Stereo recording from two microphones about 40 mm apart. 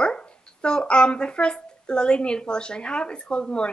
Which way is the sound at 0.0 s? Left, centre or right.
Left.